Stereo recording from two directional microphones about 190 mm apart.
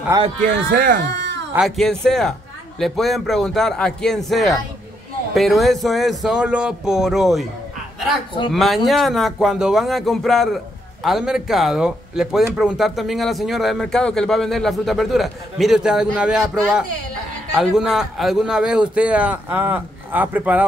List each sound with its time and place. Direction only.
0.4 s speech: 50° right (ahead or behind)
1.5 s speech: centre (ahead or behind)
8.5 s a man's voice: centre (ahead or behind)